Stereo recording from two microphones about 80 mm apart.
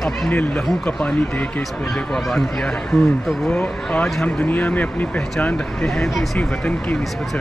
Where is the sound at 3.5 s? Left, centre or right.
Centre.